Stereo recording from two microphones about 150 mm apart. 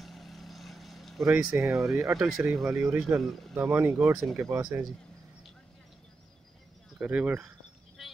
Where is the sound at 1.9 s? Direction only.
20° right (ahead or behind).